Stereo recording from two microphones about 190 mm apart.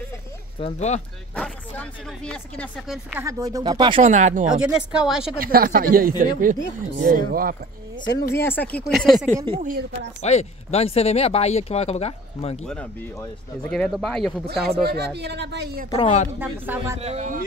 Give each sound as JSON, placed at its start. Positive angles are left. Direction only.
{"t": 0.6, "sound": "speech", "side_deg": 35}
{"t": 1.3, "sound": "speech", "side_deg": 5}
{"t": 3.1, "sound": "speech", "side_deg": -15}
{"t": 4.0, "sound": "speech", "side_deg": -40}
{"t": 4.5, "sound": "speech", "side_deg": -5}
{"t": 5.4, "sound": "speech", "side_deg": -50}
{"t": 8.2, "sound": "speech", "side_deg": 15}
{"t": 9.6, "sound": "speech", "side_deg": -45}
{"t": 10.2, "sound": "speech", "side_deg": 35}
{"t": 13.7, "sound": "speech", "side_deg": 5}
{"t": 14.5, "sound": "speech", "side_deg": -60}
{"t": 15.9, "sound": "speech", "side_deg": 30}
{"t": 16.3, "sound": "speech", "side_deg": -10}
{"t": 17.0, "sound": "speech", "side_deg": -35}